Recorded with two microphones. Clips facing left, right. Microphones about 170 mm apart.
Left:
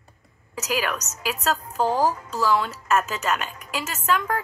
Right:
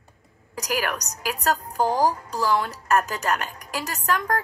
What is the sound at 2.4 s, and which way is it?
A woman's voice, 35° right (ahead or behind).